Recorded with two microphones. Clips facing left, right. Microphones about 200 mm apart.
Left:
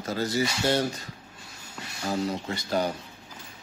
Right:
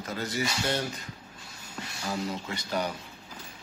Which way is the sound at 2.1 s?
30° left (ahead or behind).